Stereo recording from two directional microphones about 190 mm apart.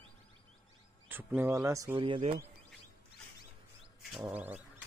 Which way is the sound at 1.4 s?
15° right (ahead or behind).